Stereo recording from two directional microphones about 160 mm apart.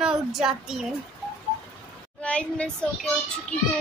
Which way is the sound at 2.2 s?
5° left (ahead or behind).